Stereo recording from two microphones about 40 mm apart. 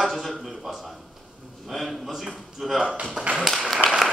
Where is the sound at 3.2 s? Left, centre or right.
Centre.